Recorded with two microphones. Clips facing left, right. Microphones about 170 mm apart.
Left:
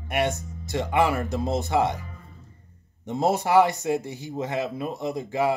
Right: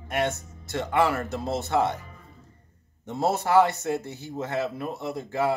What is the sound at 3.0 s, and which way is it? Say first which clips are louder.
A man's voice: left 2 dB; 15° left (ahead or behind).